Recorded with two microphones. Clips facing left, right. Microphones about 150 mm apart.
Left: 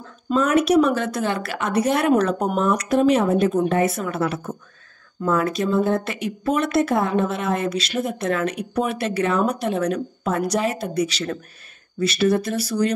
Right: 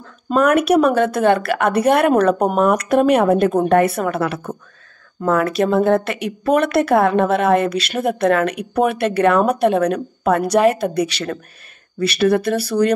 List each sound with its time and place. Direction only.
0.3 s speech: 60° right (ahead or behind)